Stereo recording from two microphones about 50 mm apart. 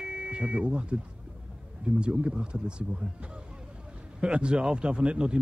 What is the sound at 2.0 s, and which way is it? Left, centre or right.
Speech, right.